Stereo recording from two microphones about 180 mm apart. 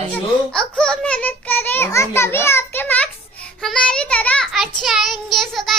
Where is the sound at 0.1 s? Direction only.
5° left (ahead or behind).